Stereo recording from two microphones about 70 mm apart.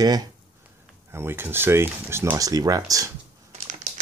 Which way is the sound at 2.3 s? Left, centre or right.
Right.